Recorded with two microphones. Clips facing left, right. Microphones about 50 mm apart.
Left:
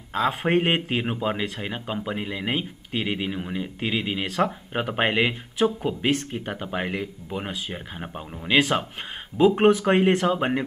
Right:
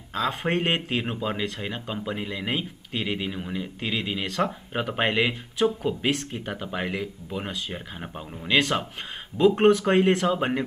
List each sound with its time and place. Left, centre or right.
0.1 s speech: centre